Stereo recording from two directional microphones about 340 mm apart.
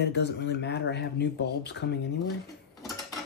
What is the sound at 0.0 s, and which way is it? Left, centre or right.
Speech, left.